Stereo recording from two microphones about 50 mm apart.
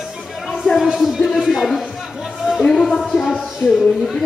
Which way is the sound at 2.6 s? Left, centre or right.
Centre.